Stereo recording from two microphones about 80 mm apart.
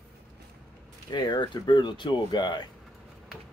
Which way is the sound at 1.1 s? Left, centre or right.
Left.